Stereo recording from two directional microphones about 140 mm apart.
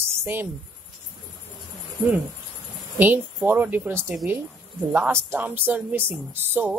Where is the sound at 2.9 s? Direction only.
15° right (ahead or behind).